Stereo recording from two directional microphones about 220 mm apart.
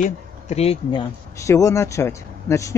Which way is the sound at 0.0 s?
30° left (ahead or behind).